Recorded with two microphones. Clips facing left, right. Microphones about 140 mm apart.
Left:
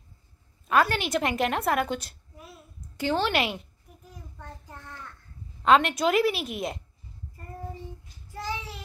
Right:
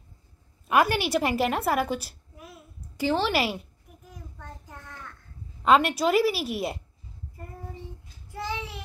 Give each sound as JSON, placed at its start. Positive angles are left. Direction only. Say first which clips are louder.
{"t": 0.7, "sound": "a woman's voice", "louder": "right 1 dB", "side_deg": -10}
{"t": 5.6, "sound": "a woman's voice", "louder": "even", "side_deg": -5}